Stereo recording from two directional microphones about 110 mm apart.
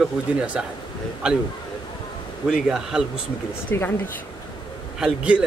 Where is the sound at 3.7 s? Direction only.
20° left (ahead or behind).